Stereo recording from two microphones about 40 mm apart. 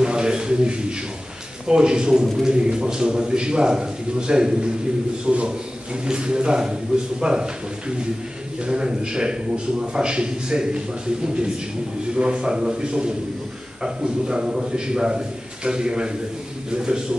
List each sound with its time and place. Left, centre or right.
0.0 s a man's voice: right
8.6 s a man's voice: right
12.2 s a man's voice: right